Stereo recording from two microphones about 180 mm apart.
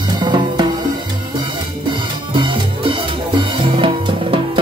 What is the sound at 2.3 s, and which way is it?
Music, 30° right (ahead or behind).